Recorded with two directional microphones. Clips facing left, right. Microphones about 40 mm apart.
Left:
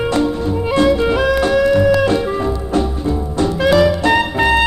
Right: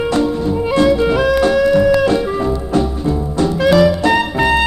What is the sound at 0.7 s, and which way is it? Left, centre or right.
Music, left.